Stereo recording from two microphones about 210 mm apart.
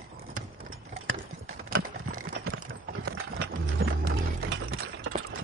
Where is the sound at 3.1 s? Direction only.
60° right (ahead or behind).